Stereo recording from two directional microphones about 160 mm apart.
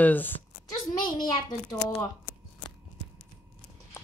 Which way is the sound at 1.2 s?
25° left (ahead or behind).